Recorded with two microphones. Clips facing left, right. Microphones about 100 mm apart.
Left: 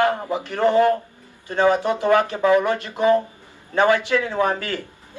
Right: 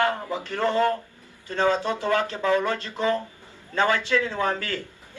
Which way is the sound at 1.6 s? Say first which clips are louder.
Left 5 dB; 20° left (ahead or behind).